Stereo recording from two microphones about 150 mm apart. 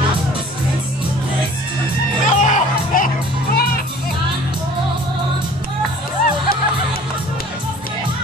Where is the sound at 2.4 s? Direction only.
60° left (ahead or behind); by 3.7 s 75° left (ahead or behind).